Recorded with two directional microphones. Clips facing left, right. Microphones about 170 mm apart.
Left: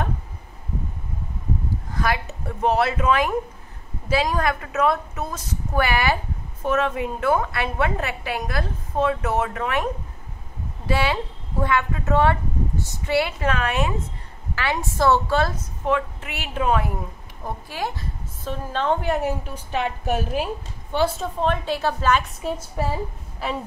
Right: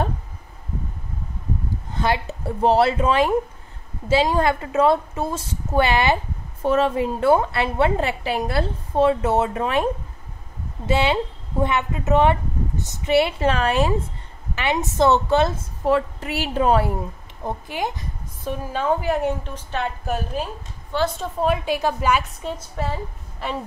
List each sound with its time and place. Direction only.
1.9 s a woman's voice: 25° right (ahead or behind)
10.9 s a woman's voice: 25° right (ahead or behind)
14.5 s a woman's voice: 20° right (ahead or behind)
15.8 s a woman's voice: 35° right (ahead or behind)
17.5 s a woman's voice: 20° right (ahead or behind); by 19.9 s 10° left (ahead or behind)
21.2 s a woman's voice: 10° right (ahead or behind)
22.4 s a woman's voice: 5° left (ahead or behind)